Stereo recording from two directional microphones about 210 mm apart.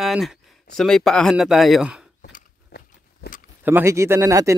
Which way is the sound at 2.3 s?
50° left (ahead or behind).